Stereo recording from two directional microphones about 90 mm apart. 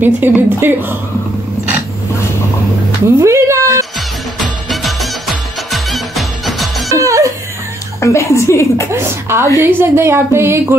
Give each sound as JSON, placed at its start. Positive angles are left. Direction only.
{"t": 0.0, "sound": "speech", "side_deg": -25}
{"t": 3.2, "sound": "a sound", "side_deg": -35}
{"t": 4.4, "sound": "music", "side_deg": 0}
{"t": 7.0, "sound": "laughter", "side_deg": -35}
{"t": 8.0, "sound": "a woman's voice", "side_deg": 35}
{"t": 8.9, "sound": "speech", "side_deg": -30}